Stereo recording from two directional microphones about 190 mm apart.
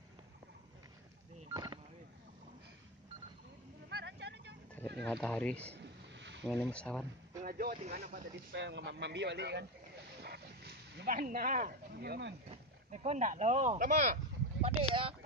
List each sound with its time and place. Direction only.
1.5 s telephone dialing: 20° right (ahead or behind)
3.9 s vehicle: 60° right (ahead or behind)
5.0 s speech: 10° left (ahead or behind)
6.1 s boat: 70° right (ahead or behind)
6.5 s speech: 5° left (ahead or behind)
7.4 s speech: 50° right (ahead or behind)
8.5 s a man's voice: 70° right (ahead or behind)
10.2 s a sound: 60° right (ahead or behind)
12.4 s speech: 35° right (ahead or behind)
14.6 s speech: 30° right (ahead or behind)